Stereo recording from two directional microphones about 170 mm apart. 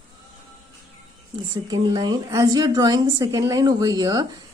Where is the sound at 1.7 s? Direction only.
25° right (ahead or behind).